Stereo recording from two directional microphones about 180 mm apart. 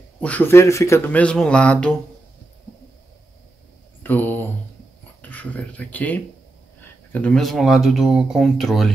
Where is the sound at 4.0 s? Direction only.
10° left (ahead or behind).